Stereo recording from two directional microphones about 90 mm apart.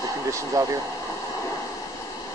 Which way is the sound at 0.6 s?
40° right (ahead or behind).